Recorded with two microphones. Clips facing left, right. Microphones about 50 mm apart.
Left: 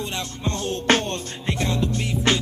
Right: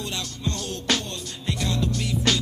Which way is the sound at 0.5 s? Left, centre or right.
Left.